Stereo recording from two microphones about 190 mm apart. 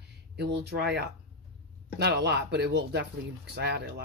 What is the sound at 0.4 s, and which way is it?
Speech, 60° right (ahead or behind).